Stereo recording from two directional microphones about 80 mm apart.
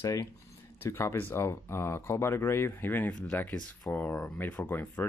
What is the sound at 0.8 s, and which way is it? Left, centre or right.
Speech, left.